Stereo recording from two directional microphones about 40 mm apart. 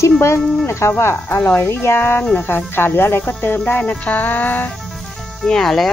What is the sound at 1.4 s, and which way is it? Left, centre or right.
Speech, left.